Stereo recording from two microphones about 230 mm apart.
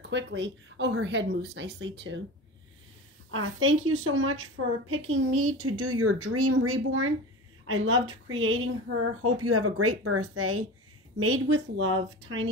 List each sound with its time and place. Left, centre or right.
0.1 s speech: right
3.3 s speech: right
9.2 s speech: right